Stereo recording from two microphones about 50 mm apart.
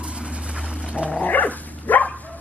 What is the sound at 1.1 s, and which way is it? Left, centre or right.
Dog, left.